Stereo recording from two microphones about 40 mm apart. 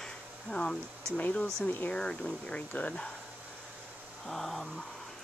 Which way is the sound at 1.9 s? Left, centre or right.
Left.